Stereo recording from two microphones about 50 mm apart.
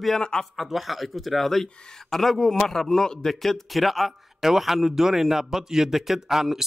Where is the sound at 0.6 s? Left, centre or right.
Centre.